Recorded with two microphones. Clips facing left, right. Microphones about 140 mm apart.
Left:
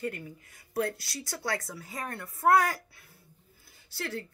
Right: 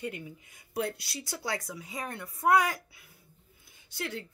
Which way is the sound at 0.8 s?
25° right (ahead or behind).